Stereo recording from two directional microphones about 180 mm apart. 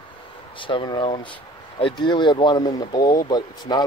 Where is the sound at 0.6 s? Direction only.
30° left (ahead or behind).